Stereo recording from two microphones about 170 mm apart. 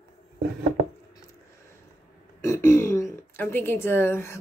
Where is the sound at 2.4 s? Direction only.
15° left (ahead or behind).